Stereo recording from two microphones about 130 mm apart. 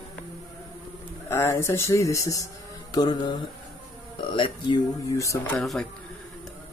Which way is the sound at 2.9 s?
30° left (ahead or behind).